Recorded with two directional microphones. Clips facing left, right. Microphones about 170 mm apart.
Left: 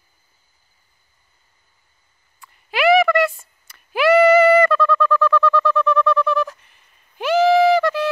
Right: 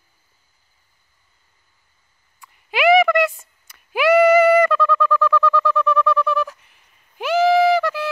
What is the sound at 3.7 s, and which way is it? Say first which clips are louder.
Bird: left 1 dB; 15° right (ahead or behind).